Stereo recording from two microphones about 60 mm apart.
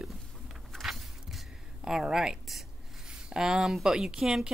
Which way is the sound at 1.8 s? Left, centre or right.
Centre.